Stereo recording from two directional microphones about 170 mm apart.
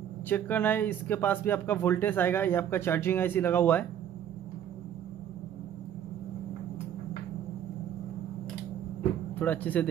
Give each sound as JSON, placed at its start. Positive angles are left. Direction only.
{"t": 0.3, "sound": "speech", "side_deg": 10}
{"t": 9.4, "sound": "speech", "side_deg": 10}